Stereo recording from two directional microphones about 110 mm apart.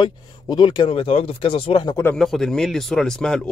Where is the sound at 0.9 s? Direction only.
60° left (ahead or behind).